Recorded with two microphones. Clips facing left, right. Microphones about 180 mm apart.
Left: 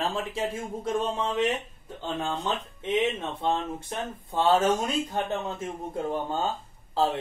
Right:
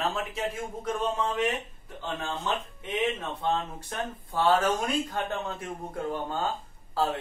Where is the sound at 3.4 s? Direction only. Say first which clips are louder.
Left 2 dB; 25° left (ahead or behind).